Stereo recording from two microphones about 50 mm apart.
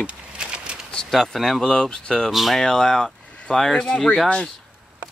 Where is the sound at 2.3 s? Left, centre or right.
Centre.